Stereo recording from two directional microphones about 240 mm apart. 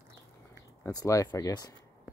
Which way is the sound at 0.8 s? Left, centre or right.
Centre.